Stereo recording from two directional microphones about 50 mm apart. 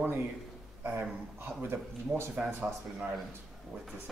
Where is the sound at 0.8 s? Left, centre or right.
Right.